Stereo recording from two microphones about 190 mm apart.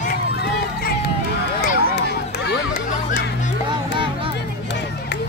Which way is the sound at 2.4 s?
60° left (ahead or behind).